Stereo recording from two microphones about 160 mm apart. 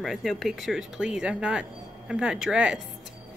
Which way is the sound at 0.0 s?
Centre (ahead or behind).